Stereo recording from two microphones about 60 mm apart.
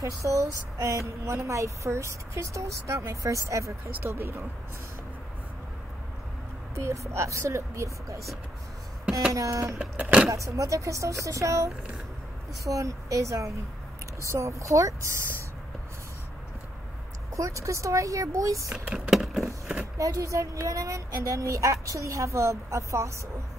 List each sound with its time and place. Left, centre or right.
0.0 s speech: right
4.1 s speech: right
6.7 s speech: right
9.3 s speech: right
9.8 s power windows: right
10.3 s speech: right
17.4 s speech: right
18.9 s a sound: centre
20.0 s speech: right